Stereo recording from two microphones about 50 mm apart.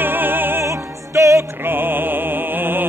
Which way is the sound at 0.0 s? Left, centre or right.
Right.